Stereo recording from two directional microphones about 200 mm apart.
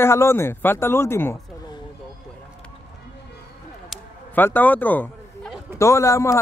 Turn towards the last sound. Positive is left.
turn(degrees=15)  # may be behind; listen again after turning